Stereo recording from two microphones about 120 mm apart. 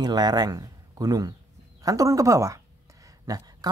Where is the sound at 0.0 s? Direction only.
35° right (ahead or behind).